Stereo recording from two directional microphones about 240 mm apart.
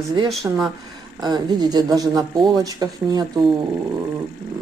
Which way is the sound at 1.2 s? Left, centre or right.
Centre.